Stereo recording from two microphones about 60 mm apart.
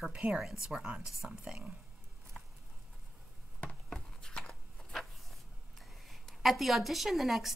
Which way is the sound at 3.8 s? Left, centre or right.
Centre.